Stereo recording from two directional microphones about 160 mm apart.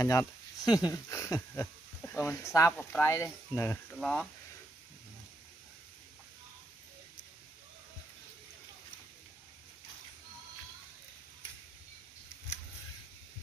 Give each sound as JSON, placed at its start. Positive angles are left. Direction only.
{"t": 0.0, "sound": "speech", "side_deg": 20}
{"t": 3.9, "sound": "speech", "side_deg": 5}